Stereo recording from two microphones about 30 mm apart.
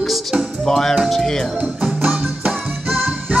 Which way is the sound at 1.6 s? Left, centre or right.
Right.